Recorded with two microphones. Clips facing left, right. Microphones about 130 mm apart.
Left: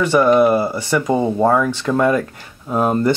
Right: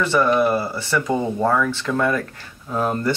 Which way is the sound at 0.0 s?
15° left (ahead or behind).